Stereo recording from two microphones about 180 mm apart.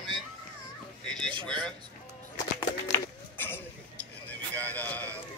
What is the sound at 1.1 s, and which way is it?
Speech, 5° left (ahead or behind).